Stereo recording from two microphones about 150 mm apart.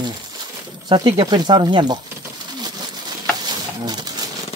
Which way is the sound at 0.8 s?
30° right (ahead or behind).